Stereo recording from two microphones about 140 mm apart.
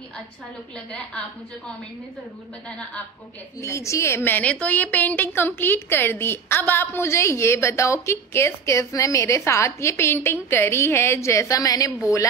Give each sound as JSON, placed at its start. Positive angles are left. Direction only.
{"t": 3.6, "sound": "a woman's voice", "side_deg": 20}